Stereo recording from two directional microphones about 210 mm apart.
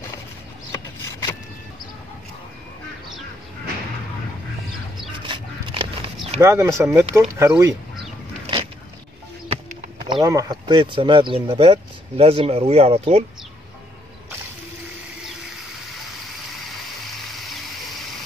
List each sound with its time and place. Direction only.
0.7 s a sound: 15° left (ahead or behind)
5.2 s dog: 25° right (ahead or behind)
6.4 s speech: 15° right (ahead or behind)
9.5 s music: 20° right (ahead or behind)
10.2 s speech: 20° right (ahead or behind)